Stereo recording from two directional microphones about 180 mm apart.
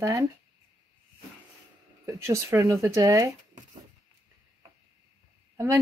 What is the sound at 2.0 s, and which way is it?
Speech, 15° right (ahead or behind).